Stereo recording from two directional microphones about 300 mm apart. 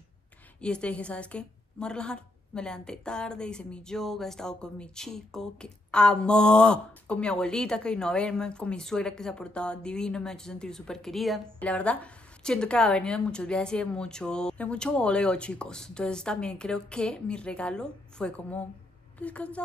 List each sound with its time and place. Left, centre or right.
0.6 s a woman's voice: centre